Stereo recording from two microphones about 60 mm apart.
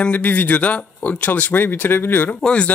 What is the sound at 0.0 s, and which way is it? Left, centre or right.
Speech, left.